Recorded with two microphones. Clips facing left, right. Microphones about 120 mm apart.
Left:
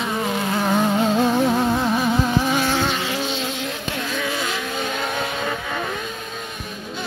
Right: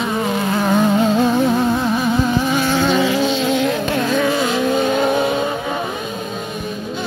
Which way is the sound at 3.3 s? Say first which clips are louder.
Right 10 dB; 90° right.